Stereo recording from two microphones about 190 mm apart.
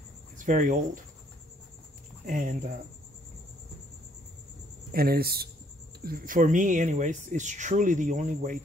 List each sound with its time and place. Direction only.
0.4 s speech: 45° right (ahead or behind)
2.2 s speech: 45° right (ahead or behind)
4.9 s speech: 55° right (ahead or behind)